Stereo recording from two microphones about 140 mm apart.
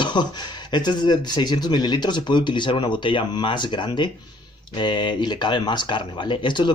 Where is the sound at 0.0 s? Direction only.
30° left (ahead or behind).